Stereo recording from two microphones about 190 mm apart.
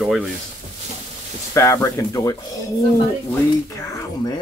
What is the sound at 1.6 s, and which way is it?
Speech, 15° left (ahead or behind).